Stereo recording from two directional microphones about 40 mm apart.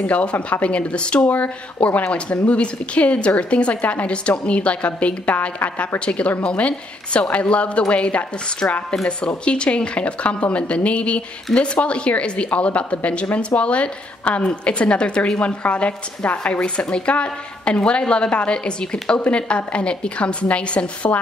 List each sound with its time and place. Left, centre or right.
0.1 s speech: left
1.2 s speech: left
2.0 s a woman's voice: left
9.0 s a woman's voice: left